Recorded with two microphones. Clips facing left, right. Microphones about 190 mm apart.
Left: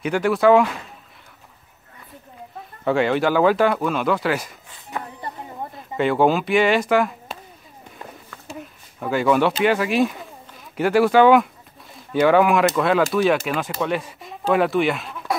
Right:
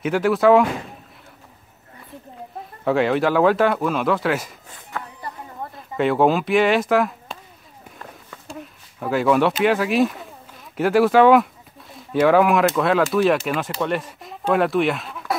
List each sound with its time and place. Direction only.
0.0 s speech: centre (ahead or behind)
2.8 s speech: centre (ahead or behind)
4.9 s a sound: 20° left (ahead or behind)
5.8 s speech: centre (ahead or behind)
8.5 s a sound: centre (ahead or behind)
9.6 s speech: centre (ahead or behind)